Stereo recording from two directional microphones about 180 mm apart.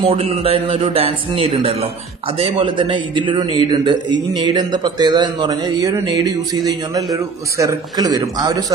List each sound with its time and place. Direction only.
0.0 s a man's voice: 35° right (ahead or behind)